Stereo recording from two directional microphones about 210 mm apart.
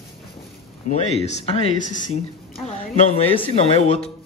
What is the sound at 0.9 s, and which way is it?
A man's voice, 30° left (ahead or behind).